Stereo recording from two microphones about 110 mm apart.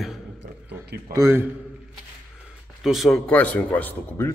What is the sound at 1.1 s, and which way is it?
Speech, 25° right (ahead or behind).